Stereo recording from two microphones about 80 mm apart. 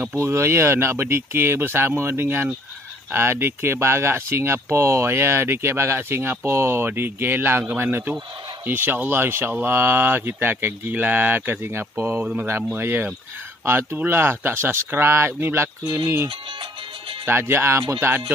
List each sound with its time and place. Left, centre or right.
0.2 s speech: right
17.3 s speech: right